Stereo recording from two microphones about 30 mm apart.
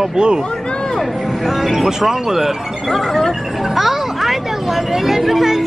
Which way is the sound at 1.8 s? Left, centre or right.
Centre.